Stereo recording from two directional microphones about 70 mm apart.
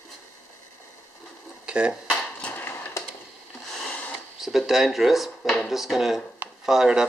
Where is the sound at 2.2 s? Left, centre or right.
Centre.